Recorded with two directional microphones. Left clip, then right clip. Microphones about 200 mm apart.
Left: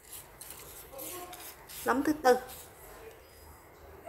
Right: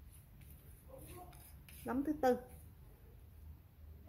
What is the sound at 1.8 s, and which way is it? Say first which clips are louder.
Speech: left 9 dB; 5° right (ahead or behind).